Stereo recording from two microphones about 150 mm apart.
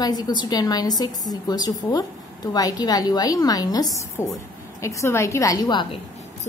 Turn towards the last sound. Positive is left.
turn(degrees=30)  # may be behind; listen again after turning